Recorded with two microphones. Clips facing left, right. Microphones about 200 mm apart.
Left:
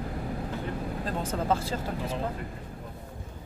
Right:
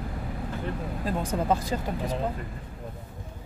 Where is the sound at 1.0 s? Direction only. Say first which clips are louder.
Right 3 dB; 15° right (ahead or behind).